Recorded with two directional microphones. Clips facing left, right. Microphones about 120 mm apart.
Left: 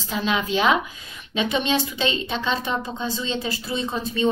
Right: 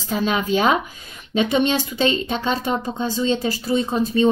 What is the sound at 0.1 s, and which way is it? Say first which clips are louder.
A woman's voice: right 3 dB; 45° right (ahead or behind).